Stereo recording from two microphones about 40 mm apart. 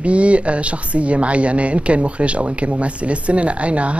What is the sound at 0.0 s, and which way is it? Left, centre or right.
Speech, right.